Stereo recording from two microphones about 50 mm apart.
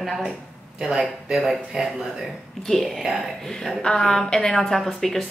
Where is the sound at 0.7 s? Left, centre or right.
Centre.